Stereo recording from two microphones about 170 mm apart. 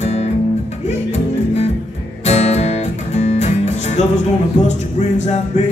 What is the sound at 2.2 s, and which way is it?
Music, 40° left (ahead or behind).